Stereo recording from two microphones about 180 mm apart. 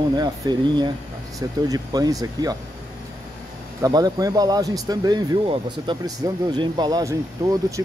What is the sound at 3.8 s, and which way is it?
Speech, 20° right (ahead or behind).